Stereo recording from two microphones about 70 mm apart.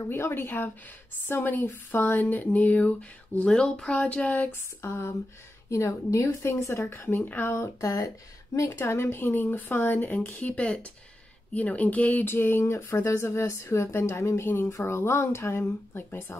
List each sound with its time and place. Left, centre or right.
0.0 s speech: left
4.8 s speech: left
7.5 s speech: left
8.7 s speech: left